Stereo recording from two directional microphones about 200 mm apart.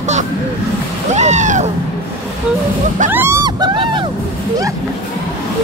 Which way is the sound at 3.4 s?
20° right (ahead or behind).